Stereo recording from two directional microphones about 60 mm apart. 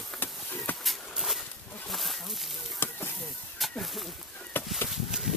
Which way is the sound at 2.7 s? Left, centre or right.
Left.